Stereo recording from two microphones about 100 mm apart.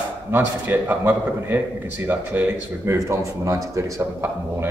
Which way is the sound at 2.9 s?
30° right (ahead or behind).